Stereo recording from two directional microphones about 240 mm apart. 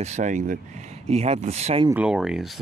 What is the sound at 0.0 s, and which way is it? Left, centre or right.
Speech, right.